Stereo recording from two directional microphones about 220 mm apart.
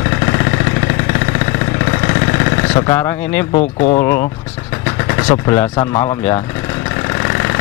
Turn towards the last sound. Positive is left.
turn(degrees=15)  # may be behind; listen again after turning